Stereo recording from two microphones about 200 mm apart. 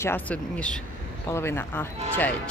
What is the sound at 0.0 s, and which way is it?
Speech, 10° left (ahead or behind).